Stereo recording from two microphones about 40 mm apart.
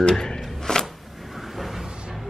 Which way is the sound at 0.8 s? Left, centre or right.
Centre.